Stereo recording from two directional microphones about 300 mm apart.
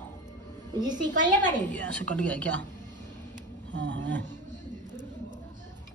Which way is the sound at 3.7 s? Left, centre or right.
Right.